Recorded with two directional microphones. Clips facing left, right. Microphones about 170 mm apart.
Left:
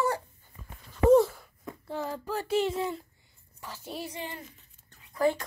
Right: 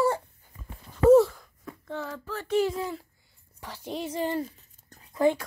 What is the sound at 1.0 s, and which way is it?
Wail, centre (ahead or behind).